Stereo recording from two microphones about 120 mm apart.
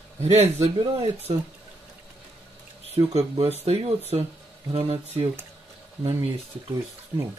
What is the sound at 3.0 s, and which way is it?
Speech, 40° right (ahead or behind).